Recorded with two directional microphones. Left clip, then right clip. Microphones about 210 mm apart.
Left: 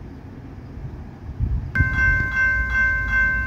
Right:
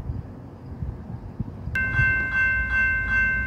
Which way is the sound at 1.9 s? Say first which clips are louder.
Left 2 dB; 40° left (ahead or behind).